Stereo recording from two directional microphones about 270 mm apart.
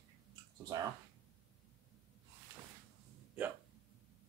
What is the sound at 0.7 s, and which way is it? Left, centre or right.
Speech, centre.